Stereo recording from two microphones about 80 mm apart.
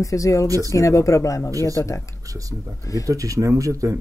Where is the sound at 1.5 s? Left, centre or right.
Right.